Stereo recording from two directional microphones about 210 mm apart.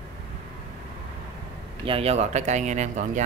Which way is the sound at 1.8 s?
25° right (ahead or behind).